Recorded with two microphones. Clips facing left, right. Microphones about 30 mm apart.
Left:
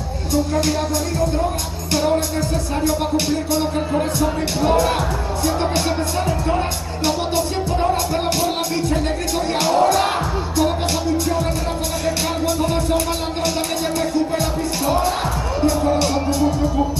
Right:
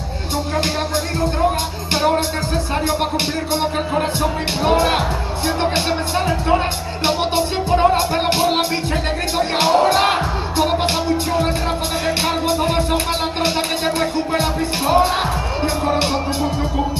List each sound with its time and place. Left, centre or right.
0.3 s music: right